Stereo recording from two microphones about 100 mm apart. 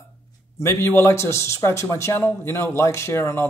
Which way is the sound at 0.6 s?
25° left (ahead or behind).